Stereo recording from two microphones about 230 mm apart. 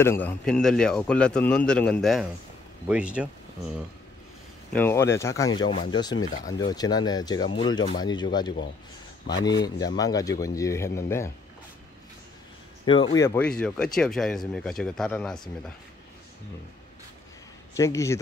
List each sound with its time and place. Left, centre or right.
0.0 s speech: centre
4.7 s speech: centre
9.8 s speech: centre
12.8 s speech: left; by 15.4 s centre
17.7 s speech: centre